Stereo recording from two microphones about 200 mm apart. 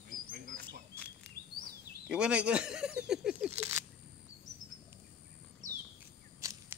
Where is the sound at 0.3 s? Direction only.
45° right (ahead or behind).